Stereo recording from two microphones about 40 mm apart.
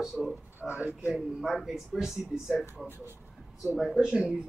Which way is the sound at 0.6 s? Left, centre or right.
Right.